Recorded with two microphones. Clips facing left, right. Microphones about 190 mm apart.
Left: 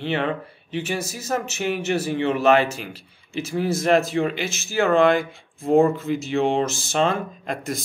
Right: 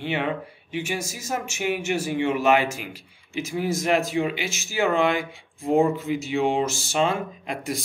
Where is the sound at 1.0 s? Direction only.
35° left (ahead or behind).